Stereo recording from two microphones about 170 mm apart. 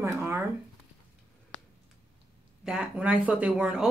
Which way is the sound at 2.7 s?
5° right (ahead or behind).